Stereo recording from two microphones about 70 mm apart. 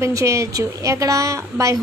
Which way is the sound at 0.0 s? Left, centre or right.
Right.